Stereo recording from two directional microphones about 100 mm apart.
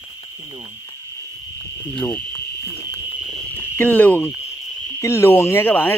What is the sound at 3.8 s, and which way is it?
Speech, 15° left (ahead or behind).